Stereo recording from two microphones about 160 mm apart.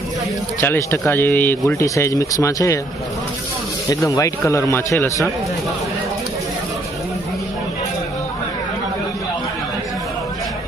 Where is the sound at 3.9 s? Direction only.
20° left (ahead or behind).